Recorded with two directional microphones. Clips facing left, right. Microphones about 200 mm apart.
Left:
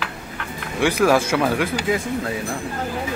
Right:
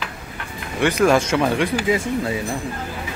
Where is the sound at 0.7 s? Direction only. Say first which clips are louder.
Right 1 dB; 10° left (ahead or behind).